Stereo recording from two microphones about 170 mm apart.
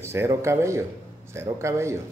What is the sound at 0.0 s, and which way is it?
Speech, 15° right (ahead or behind).